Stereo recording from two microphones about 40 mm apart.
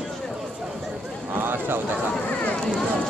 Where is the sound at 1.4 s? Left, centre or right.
Right.